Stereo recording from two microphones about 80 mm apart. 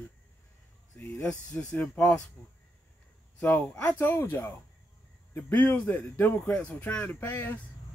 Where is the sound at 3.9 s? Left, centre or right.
Left.